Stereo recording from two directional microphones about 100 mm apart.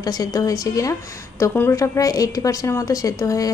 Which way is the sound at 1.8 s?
35° left (ahead or behind).